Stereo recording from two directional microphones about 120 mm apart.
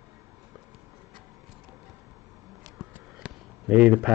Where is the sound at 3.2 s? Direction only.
10° right (ahead or behind).